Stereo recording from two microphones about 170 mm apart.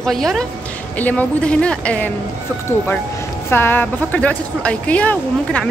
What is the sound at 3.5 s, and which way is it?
Speech, 10° left (ahead or behind).